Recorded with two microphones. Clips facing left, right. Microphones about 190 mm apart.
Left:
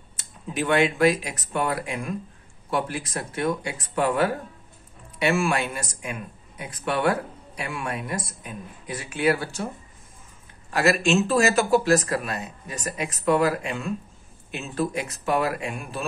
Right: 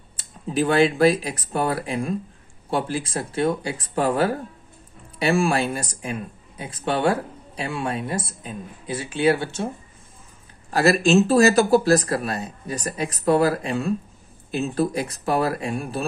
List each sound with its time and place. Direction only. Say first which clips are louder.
0.2 s speech: right 6 dB; 35° right (ahead or behind)
10.7 s speech: right 4 dB; 35° right (ahead or behind)